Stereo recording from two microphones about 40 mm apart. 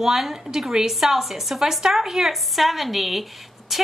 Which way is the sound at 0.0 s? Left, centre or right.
Centre.